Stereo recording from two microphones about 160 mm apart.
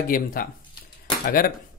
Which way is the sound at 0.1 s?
60° left (ahead or behind).